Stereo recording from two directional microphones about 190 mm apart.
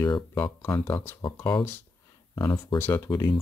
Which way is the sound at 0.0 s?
20° left (ahead or behind).